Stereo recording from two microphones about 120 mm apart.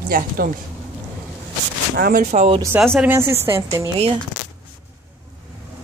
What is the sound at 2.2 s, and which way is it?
Speech, 65° right (ahead or behind).